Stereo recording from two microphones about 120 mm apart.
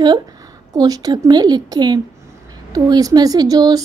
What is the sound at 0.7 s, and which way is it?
A woman's voice, 35° right (ahead or behind).